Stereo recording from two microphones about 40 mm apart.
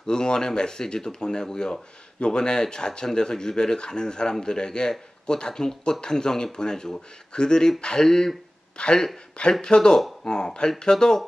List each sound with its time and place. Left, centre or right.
0.0 s speech: centre